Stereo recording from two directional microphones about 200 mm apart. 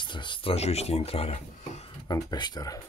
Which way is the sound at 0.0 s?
25° left (ahead or behind).